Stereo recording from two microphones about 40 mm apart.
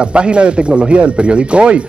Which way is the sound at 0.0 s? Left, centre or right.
Right.